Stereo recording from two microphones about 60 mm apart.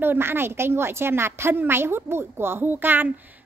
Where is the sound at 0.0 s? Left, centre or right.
Right.